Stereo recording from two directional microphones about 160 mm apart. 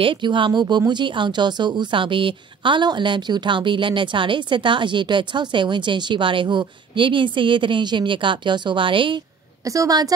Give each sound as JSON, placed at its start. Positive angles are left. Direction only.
{"t": 0.0, "sound": "speech", "side_deg": -30}
{"t": 9.7, "sound": "a woman's voice", "side_deg": -20}